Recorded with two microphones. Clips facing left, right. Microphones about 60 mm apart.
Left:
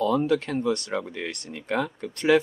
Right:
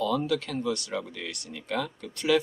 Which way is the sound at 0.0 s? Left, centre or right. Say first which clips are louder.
Left 4 dB; left.